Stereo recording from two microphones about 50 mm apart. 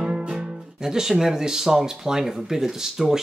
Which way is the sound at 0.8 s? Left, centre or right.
Centre.